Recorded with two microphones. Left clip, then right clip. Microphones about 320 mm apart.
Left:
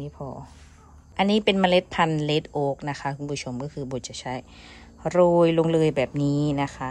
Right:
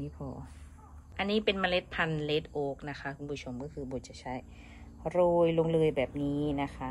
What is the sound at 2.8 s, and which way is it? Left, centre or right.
A woman's voice, left.